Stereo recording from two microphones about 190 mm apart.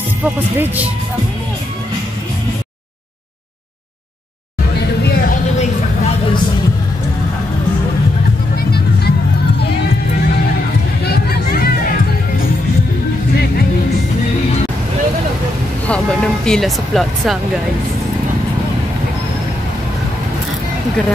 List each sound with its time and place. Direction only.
0.2 s speech: 10° right (ahead or behind)
4.7 s music: 55° left (ahead or behind)
5.6 s a sound: 35° left (ahead or behind)
8.5 s music: 55° left (ahead or behind)
11.1 s music: 55° left (ahead or behind)
15.9 s vehicle: 5° left (ahead or behind)